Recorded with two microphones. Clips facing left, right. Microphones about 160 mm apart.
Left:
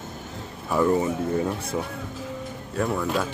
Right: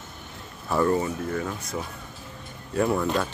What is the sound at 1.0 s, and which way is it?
Speech, 25° left (ahead or behind).